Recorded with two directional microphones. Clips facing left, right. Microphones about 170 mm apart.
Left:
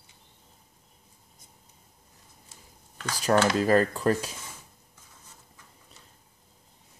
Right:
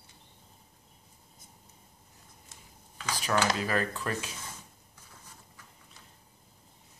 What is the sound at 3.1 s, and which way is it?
Speech, 40° left (ahead or behind).